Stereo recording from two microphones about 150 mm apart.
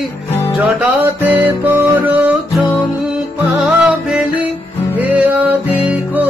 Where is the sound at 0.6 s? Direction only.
10° right (ahead or behind).